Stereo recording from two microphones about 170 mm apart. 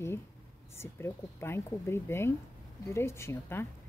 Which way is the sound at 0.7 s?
15° left (ahead or behind).